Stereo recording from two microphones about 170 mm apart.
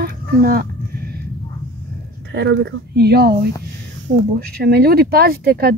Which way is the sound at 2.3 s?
90° right.